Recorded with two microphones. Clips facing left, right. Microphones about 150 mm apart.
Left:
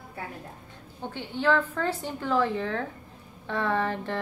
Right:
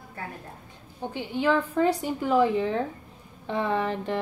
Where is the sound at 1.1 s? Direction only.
15° right (ahead or behind).